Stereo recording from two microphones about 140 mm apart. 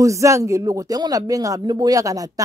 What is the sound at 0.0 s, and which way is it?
Speech, 20° right (ahead or behind).